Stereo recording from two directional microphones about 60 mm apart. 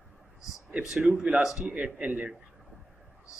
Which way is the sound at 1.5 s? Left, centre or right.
Right.